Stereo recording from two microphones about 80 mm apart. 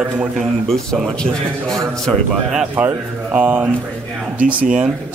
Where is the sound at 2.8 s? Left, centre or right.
Centre.